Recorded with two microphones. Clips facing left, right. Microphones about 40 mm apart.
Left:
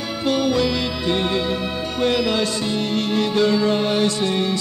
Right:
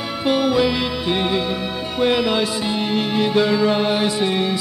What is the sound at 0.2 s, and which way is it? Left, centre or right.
Music, centre.